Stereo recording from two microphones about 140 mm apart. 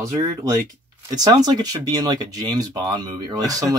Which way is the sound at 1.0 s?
30° right (ahead or behind).